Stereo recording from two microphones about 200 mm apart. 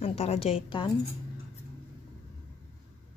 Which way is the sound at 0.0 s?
30° left (ahead or behind).